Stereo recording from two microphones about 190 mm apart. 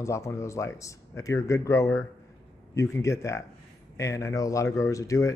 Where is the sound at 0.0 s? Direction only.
15° left (ahead or behind).